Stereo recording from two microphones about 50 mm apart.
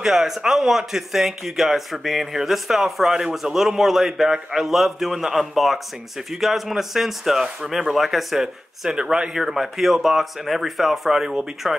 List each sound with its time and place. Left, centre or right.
0.0 s speech: centre